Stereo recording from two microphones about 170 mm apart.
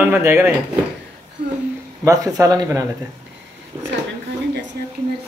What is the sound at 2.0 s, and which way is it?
Speech, 20° right (ahead or behind).